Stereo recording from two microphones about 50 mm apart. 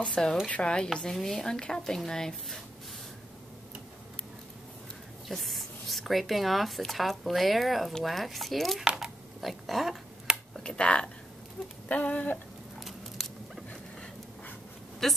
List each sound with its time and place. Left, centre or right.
0.0 s a woman's voice: centre
1.1 s a woman's voice: centre
5.3 s speech: centre
8.8 s a sound: centre
9.4 s speech: centre
10.6 s speech: left
12.7 s dog: centre
15.0 s speech: centre